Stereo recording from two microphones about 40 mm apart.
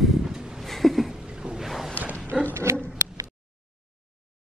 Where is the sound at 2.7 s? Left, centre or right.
Right.